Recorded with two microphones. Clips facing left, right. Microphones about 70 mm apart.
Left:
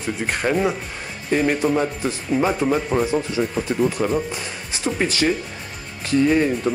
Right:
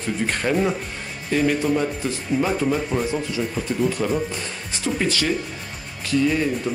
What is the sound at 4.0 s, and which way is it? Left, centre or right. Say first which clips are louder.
Speech: left 1 dB; centre.